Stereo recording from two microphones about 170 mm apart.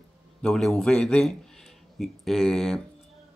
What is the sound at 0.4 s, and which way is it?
Speech, 5° left (ahead or behind).